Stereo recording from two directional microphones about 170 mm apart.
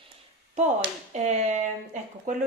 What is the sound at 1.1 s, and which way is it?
Speech, 40° right (ahead or behind).